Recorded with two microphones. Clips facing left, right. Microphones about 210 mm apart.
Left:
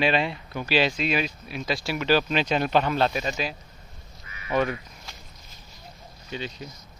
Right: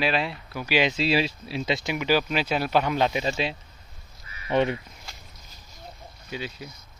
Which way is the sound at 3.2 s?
25° right (ahead or behind).